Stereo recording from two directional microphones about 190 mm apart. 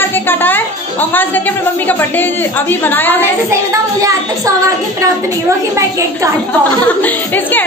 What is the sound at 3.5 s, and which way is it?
A child's voice, 15° right (ahead or behind).